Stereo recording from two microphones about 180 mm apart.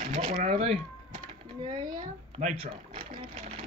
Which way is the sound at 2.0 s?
40° right (ahead or behind).